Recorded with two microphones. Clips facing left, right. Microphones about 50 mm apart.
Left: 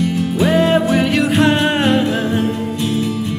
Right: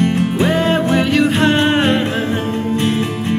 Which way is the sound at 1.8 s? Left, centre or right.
Right.